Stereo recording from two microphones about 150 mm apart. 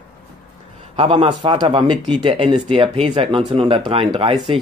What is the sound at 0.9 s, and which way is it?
Speech, 35° right (ahead or behind).